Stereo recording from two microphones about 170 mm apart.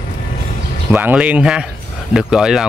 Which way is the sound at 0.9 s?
10° right (ahead or behind).